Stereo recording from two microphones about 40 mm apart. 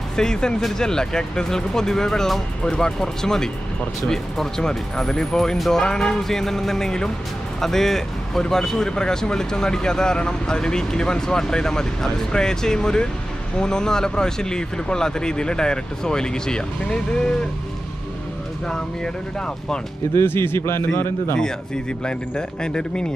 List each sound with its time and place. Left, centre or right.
0.1 s speech: centre
20.2 s speech: left
22.0 s speech: left